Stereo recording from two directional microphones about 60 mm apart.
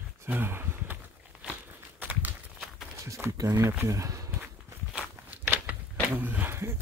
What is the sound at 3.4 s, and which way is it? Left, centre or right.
Speech, right.